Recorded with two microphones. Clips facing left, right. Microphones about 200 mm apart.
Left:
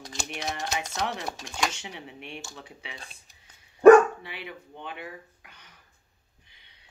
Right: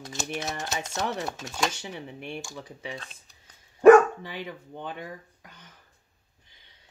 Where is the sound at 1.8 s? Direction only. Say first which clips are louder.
Right 3 dB; 40° right (ahead or behind).